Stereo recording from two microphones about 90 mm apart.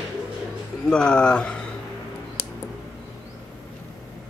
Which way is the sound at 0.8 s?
10° left (ahead or behind).